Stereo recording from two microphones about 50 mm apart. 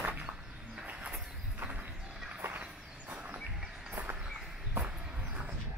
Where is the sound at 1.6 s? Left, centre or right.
Right.